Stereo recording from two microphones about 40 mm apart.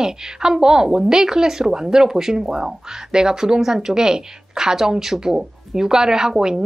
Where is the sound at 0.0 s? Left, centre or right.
Centre.